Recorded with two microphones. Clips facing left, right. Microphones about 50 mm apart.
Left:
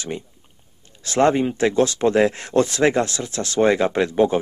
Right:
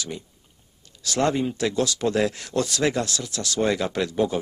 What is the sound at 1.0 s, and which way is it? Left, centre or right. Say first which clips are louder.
Speech: left 6 dB; left.